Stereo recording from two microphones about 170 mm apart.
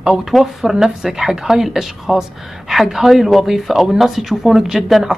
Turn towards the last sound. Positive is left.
turn(degrees=0)  # may be behind; listen again after turning